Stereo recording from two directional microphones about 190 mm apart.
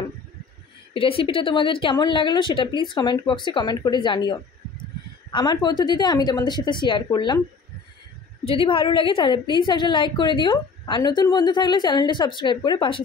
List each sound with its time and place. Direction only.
0.9 s a woman's voice: 30° left (ahead or behind)
8.5 s a woman's voice: 30° left (ahead or behind)